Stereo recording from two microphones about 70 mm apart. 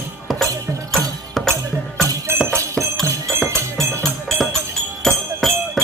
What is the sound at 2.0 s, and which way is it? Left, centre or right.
Music, right.